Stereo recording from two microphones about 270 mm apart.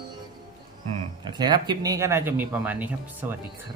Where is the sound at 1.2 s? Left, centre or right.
Centre.